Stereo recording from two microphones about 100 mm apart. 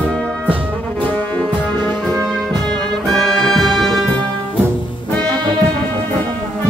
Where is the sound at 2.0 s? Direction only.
5° left (ahead or behind).